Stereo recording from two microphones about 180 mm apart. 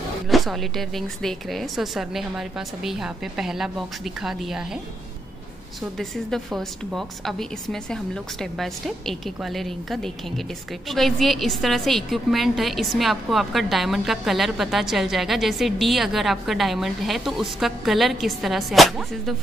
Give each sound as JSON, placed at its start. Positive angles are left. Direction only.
{"t": 0.3, "sound": "a woman's voice", "side_deg": 0}
{"t": 5.8, "sound": "a woman's voice", "side_deg": 0}